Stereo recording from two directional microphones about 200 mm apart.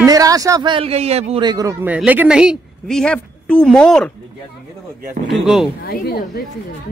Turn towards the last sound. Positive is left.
turn(degrees=50)  # may be behind; listen again after turning